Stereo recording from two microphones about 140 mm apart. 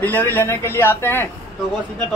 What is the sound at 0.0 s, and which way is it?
A man's voice, 15° left (ahead or behind).